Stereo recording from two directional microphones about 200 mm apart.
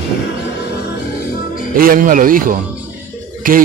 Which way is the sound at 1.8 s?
45° right (ahead or behind).